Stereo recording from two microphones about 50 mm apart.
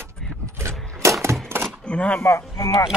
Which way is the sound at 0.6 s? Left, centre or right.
Right.